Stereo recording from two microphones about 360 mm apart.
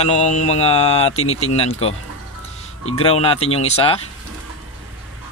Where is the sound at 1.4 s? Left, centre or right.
Centre.